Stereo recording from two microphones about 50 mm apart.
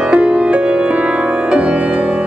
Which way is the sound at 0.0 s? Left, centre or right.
Right.